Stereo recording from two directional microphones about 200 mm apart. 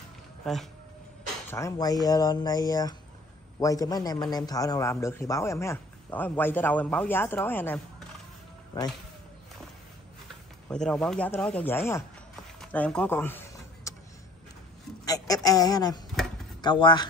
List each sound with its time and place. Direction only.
0.5 s speech: centre (ahead or behind)
1.5 s a man's voice: 15° left (ahead or behind)
10.7 s a man's voice: 5° left (ahead or behind)
13.9 s vehicle: 15° left (ahead or behind)
15.0 s a sound: 20° left (ahead or behind)
16.6 s speech: 25° left (ahead or behind)